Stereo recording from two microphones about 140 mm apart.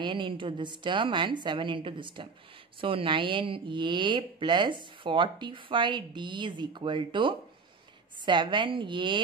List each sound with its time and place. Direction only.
0.0 s speech: 35° right (ahead or behind)